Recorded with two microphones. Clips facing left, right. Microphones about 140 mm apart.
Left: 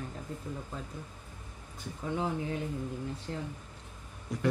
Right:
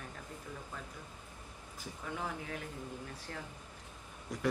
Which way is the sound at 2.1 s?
25° left (ahead or behind).